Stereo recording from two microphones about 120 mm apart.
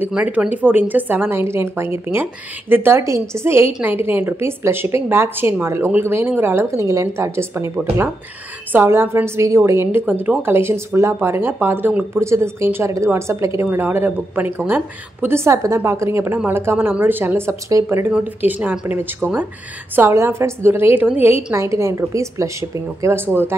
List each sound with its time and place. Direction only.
0.0 s a woman's voice: 10° right (ahead or behind)
8.7 s a woman's voice: 20° right (ahead or behind)